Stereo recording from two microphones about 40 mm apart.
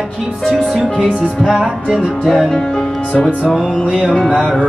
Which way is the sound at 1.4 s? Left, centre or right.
Centre.